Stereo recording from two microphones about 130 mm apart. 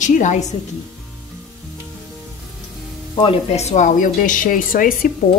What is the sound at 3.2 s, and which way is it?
Speech, 50° left (ahead or behind).